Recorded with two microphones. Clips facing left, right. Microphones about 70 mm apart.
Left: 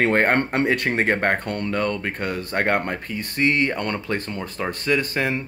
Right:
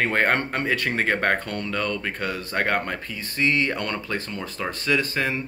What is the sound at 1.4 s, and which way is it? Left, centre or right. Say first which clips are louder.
Speech: left 4 dB; left.